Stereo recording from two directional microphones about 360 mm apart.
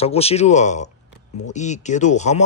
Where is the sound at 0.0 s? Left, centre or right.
Centre.